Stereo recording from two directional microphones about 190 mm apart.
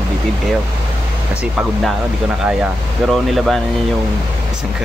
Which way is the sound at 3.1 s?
Centre (ahead or behind).